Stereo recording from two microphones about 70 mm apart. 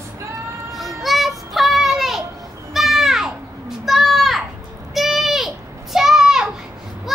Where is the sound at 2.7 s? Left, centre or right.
Centre.